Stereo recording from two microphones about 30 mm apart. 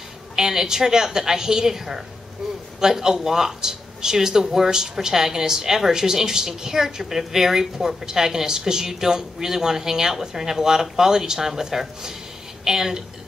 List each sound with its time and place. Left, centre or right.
0.4 s a woman's voice: centre